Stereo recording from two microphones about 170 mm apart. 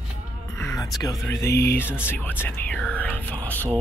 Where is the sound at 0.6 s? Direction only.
20° left (ahead or behind).